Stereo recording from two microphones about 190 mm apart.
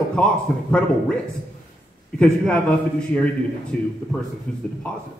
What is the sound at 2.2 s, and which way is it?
Speech, 5° left (ahead or behind).